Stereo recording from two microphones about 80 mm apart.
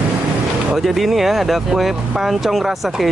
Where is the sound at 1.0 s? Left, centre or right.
Centre.